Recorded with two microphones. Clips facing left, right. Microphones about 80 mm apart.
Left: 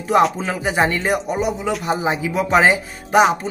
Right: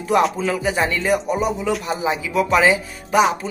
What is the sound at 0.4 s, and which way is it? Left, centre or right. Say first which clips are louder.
Speech: left 1 dB; left.